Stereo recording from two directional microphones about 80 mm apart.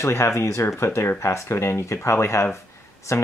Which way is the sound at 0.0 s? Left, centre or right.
Left.